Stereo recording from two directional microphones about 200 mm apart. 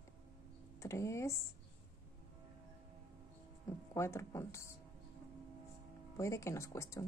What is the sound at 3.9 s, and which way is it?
Speech, 15° left (ahead or behind).